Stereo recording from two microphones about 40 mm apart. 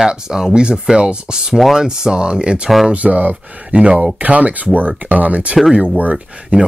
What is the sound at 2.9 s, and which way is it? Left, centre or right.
Speech, right.